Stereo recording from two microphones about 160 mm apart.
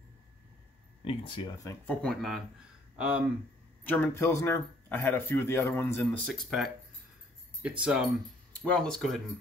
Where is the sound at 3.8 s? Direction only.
10° left (ahead or behind).